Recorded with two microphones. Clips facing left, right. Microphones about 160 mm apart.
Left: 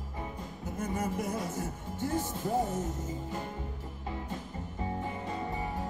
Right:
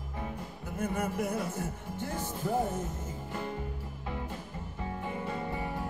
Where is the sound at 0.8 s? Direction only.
55° right (ahead or behind).